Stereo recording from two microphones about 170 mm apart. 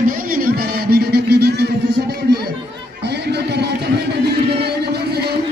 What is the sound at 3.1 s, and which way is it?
Music, 75° right (ahead or behind).